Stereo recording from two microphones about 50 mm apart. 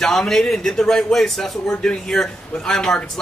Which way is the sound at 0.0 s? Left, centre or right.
Centre.